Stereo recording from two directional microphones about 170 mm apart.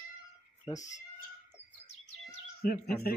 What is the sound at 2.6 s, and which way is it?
Speech, 65° left (ahead or behind).